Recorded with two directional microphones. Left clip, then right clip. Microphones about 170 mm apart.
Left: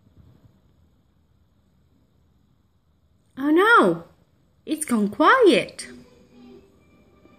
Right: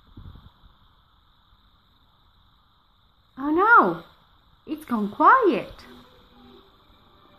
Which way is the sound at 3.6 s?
5° left (ahead or behind).